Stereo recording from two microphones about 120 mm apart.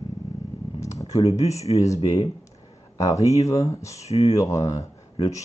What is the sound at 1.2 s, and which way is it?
Speech, 65° left (ahead or behind).